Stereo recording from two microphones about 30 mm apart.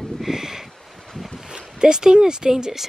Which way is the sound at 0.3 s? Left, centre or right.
Centre.